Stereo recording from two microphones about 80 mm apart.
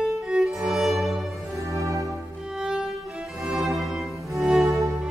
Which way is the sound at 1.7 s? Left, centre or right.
Right.